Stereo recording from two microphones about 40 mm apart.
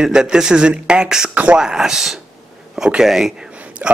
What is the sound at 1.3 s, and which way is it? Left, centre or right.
Speech, right.